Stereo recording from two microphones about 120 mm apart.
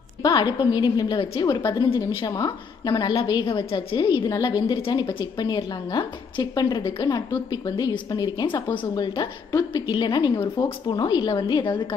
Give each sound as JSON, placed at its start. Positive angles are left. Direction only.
{"t": 0.2, "sound": "a woman's voice", "side_deg": 35}